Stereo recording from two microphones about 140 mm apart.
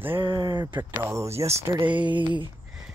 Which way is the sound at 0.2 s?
35° right (ahead or behind).